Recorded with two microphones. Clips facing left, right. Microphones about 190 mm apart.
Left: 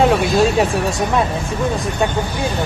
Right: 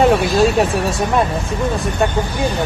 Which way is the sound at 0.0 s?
Centre (ahead or behind).